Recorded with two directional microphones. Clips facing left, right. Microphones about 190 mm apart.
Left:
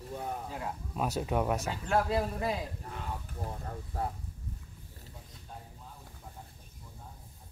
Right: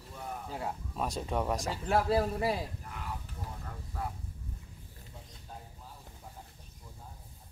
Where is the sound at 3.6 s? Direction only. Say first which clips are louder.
Left 3 dB; 35° left (ahead or behind).